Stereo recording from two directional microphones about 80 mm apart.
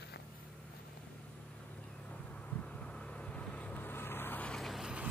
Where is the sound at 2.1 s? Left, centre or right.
Centre.